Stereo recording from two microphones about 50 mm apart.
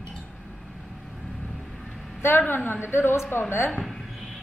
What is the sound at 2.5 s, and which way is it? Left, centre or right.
A woman's voice, left.